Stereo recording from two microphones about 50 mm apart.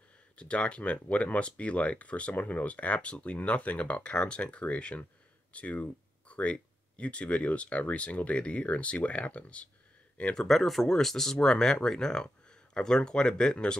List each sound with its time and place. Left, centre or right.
0.4 s speech: left
10.3 s speech: centre